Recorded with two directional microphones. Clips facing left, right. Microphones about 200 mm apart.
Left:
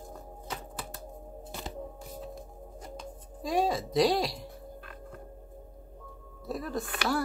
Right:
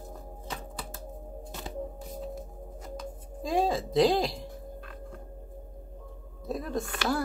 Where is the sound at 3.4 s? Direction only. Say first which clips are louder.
Right 1 dB; 25° right (ahead or behind).